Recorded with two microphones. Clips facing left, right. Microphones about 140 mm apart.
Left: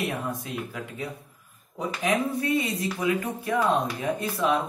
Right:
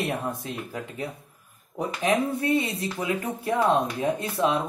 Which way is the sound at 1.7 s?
55° right (ahead or behind).